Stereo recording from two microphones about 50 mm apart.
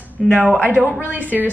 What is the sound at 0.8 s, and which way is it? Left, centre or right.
Speech, right.